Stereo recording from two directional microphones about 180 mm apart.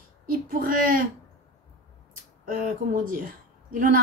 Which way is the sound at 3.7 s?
50° right (ahead or behind).